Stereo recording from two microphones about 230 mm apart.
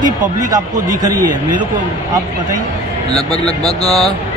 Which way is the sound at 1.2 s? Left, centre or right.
Right.